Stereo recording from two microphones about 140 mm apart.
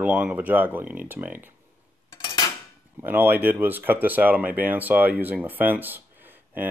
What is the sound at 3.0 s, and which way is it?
Speech, 15° right (ahead or behind).